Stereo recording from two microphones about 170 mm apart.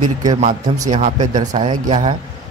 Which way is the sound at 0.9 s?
45° right (ahead or behind).